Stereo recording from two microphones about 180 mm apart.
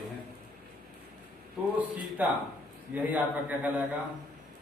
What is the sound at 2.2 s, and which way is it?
Speech, 10° right (ahead or behind).